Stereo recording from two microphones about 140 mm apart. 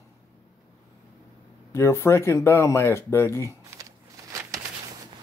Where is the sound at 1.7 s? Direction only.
20° left (ahead or behind).